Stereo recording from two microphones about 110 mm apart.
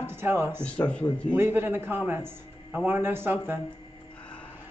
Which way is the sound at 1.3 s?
20° right (ahead or behind).